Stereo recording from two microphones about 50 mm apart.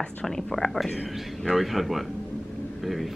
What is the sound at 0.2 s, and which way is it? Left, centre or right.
Speech, centre.